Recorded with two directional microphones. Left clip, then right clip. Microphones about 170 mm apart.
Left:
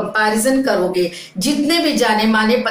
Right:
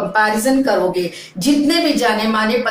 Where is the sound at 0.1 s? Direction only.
30° left (ahead or behind).